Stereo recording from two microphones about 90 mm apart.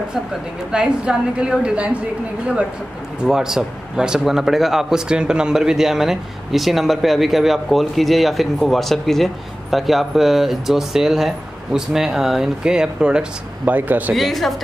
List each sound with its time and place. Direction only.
0.7 s a woman's voice: 10° right (ahead or behind)
3.3 s speech: 5° right (ahead or behind)
14.1 s speech: centre (ahead or behind)